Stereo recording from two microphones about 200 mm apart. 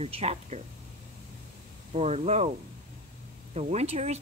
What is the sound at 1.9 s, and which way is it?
Speech, 30° right (ahead or behind).